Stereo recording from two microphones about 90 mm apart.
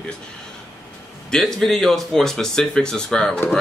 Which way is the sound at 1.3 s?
5° left (ahead or behind).